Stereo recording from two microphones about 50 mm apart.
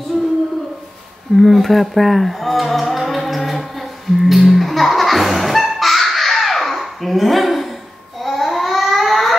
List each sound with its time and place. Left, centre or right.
1.3 s speech: centre
4.2 s music: centre
8.2 s babbling: centre